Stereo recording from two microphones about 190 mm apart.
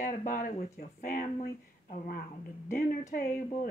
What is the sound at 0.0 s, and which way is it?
Speech, 45° left (ahead or behind).